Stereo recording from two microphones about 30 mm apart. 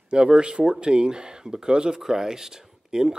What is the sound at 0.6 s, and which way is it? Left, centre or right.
Speech, right.